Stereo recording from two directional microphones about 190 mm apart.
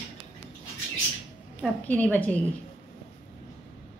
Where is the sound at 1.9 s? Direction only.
10° left (ahead or behind).